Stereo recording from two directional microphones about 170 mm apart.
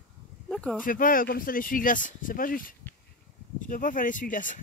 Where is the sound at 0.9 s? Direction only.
55° left (ahead or behind).